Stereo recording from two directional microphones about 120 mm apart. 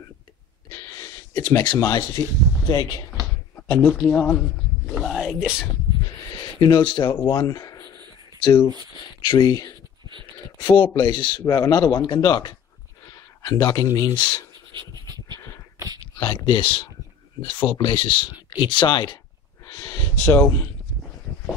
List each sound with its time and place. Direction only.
1.3 s speech: 30° left (ahead or behind)
3.5 s a sound: 10° left (ahead or behind)
3.8 s speech: centre (ahead or behind)
4.1 s speech: 10° left (ahead or behind)
4.8 s whispering: centre (ahead or behind)
6.6 s speech: 40° left (ahead or behind)
9.3 s speech: 35° left (ahead or behind)
14.7 s pant: 40° right (ahead or behind)
15.3 s a sound: 25° left (ahead or behind)
16.2 s speech: 40° left (ahead or behind)
19.6 s a sound: 30° left (ahead or behind)